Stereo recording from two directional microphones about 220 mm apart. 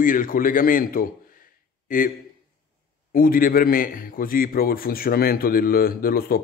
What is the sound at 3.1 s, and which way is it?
A man's voice, 40° left (ahead or behind).